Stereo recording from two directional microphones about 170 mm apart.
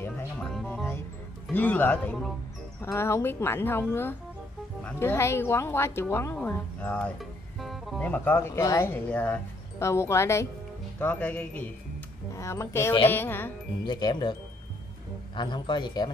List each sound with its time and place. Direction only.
0.7 s music: 10° left (ahead or behind)
1.5 s speech: 10° left (ahead or behind)
13.8 s speech: 25° left (ahead or behind)
15.3 s speech: 25° left (ahead or behind)